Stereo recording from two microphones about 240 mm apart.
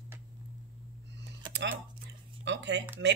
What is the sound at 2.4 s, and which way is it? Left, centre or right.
Speech, right.